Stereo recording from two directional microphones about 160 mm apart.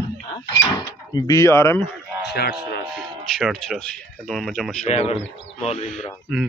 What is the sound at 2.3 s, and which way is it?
Speech, 85° left.